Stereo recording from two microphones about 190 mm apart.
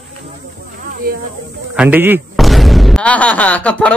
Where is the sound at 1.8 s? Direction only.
10° right (ahead or behind).